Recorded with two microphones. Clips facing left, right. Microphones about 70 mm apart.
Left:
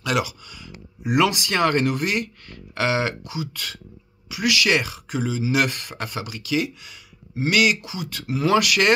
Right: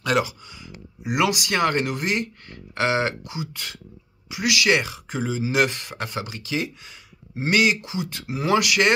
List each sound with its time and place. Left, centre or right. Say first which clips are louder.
0.0 s speech: right 2 dB; right